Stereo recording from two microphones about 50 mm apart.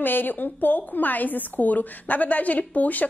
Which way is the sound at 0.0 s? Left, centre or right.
Left.